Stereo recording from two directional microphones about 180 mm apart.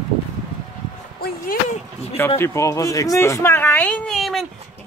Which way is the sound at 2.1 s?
15° left (ahead or behind).